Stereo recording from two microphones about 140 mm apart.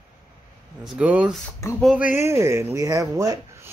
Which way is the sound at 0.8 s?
10° right (ahead or behind).